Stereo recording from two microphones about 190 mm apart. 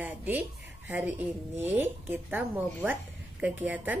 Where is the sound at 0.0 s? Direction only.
10° right (ahead or behind).